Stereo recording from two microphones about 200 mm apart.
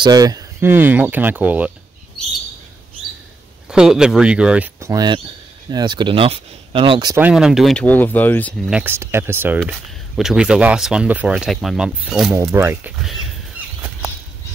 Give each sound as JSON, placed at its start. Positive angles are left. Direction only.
{"t": 0.0, "sound": "speech", "side_deg": -20}
{"t": 3.7, "sound": "speech", "side_deg": -5}
{"t": 7.2, "sound": "speech", "side_deg": -5}
{"t": 8.6, "sound": "speech", "side_deg": -5}
{"t": 9.6, "sound": "speech", "side_deg": 0}